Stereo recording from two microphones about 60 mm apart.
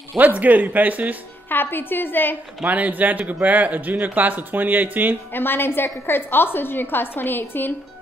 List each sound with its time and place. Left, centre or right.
0.4 s speech: right
1.5 s a woman's voice: left
2.6 s speech: right
5.3 s a woman's voice: left